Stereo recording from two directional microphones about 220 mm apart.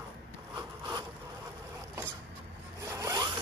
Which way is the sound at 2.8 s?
15° right (ahead or behind).